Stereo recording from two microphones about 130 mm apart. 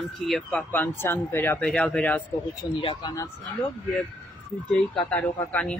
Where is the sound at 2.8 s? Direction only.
45° left (ahead or behind).